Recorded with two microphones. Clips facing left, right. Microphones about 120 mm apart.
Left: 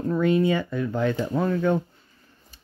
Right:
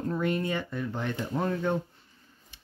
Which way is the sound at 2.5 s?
40° left (ahead or behind).